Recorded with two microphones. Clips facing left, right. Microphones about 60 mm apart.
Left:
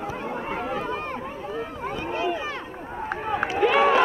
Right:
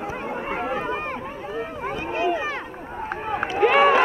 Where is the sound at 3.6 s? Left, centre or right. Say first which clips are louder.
Right 3 dB; right.